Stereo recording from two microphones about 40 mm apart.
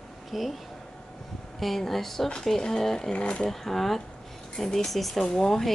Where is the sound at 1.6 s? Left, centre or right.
Centre.